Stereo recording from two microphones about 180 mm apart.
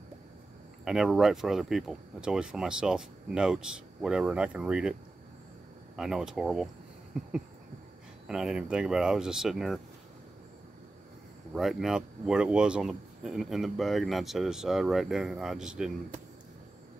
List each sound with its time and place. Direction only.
0.8 s speech: 5° right (ahead or behind)
5.9 s speech: 5° right (ahead or behind)
8.3 s speech: 5° right (ahead or behind)
11.5 s speech: centre (ahead or behind)